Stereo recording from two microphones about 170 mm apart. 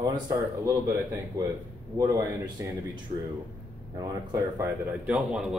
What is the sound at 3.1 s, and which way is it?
Speech, 40° right (ahead or behind).